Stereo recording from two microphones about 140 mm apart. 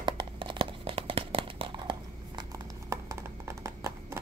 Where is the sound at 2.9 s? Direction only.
20° right (ahead or behind).